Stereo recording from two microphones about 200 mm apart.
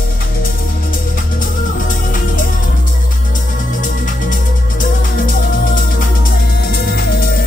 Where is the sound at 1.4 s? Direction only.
45° left (ahead or behind).